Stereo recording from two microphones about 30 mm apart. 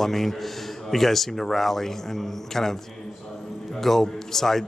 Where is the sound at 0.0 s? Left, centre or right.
Centre.